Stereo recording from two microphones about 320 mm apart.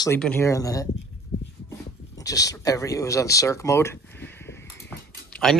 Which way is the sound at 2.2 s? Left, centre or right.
Centre.